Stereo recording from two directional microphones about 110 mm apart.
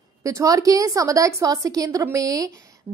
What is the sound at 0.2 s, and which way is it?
A woman's voice, 30° right (ahead or behind).